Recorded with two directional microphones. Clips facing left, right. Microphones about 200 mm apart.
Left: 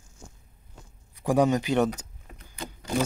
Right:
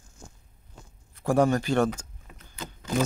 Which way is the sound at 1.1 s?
15° left (ahead or behind).